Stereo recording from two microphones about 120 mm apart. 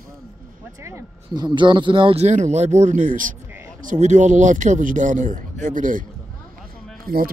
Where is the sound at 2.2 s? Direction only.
75° right (ahead or behind).